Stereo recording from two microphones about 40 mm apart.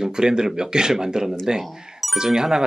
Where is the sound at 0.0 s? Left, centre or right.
Centre.